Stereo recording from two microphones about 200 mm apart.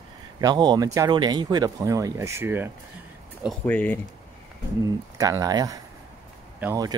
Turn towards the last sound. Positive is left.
turn(degrees=-15)  # may be behind; listen again after turning